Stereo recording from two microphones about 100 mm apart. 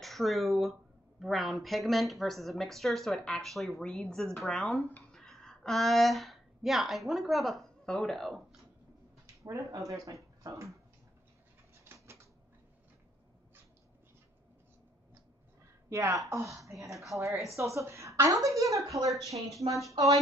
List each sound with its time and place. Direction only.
0.0 s a woman's voice: centre (ahead or behind)
9.2 s speech: 30° right (ahead or behind)
11.7 s a sound: 25° right (ahead or behind)
15.9 s a woman's voice: 30° right (ahead or behind)